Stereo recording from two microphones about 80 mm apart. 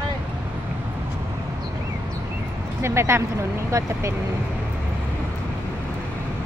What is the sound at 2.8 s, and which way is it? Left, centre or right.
Speech, right.